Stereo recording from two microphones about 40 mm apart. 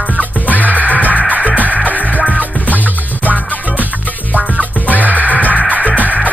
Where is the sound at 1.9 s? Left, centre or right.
Left.